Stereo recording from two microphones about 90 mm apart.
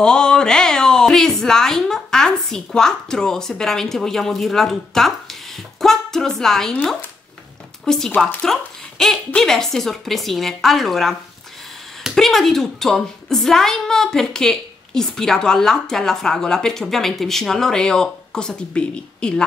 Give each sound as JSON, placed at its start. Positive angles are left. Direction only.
{"t": 0.0, "sound": "a woman's voice", "side_deg": 10}